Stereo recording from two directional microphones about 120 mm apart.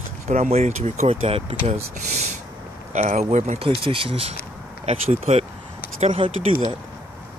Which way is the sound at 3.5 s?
50° right (ahead or behind).